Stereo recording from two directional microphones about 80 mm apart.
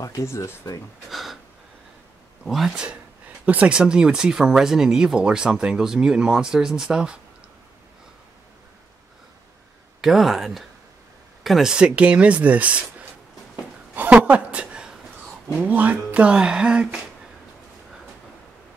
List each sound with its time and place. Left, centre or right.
0.0 s speech: left
1.1 s a sound: centre
2.4 s speech: centre
10.0 s speech: centre
13.9 s a sound: right
15.6 s speech: centre